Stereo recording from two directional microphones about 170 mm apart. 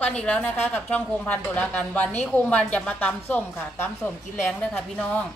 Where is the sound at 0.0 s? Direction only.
5° left (ahead or behind).